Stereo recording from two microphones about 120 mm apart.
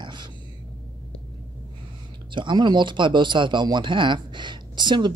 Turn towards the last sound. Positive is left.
turn(degrees=-40)  # may be behind; listen again after turning